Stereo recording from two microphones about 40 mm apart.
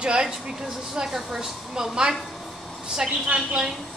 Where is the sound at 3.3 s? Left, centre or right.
Right.